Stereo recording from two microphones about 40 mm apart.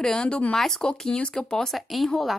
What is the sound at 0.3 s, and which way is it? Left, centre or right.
Speech, left.